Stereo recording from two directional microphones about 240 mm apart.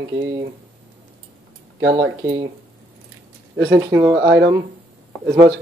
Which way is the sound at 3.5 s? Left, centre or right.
Right.